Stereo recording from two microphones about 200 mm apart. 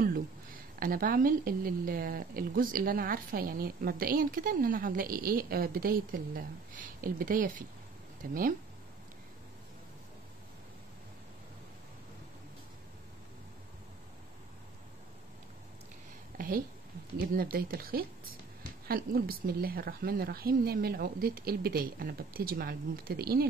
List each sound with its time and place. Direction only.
0.0 s a woman's voice: 45° right (ahead or behind)
16.3 s a woman's voice: 45° right (ahead or behind)